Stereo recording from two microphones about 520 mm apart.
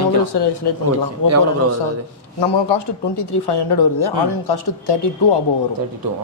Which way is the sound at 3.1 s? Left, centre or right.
Left.